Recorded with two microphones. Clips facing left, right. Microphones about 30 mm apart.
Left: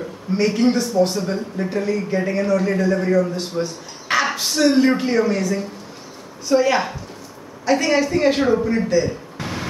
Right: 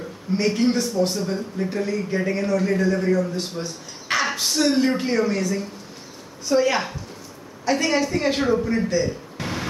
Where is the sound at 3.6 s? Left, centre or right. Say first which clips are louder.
Left 7 dB; left.